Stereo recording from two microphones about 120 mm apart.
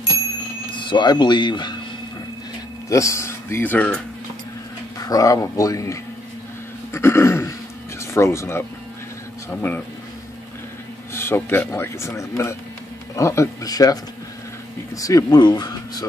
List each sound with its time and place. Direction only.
0.7 s speech: 40° left (ahead or behind)
2.9 s speech: 25° left (ahead or behind)
4.9 s speech: 30° left (ahead or behind)
6.9 s throat clearing: 20° left (ahead or behind)
8.0 s speech: 20° left (ahead or behind)
11.1 s speech: 20° left (ahead or behind)
15.0 s speech: 30° left (ahead or behind)